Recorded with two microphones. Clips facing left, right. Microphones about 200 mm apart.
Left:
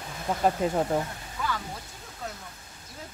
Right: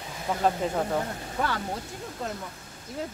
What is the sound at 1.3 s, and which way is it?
Speech, 60° right (ahead or behind).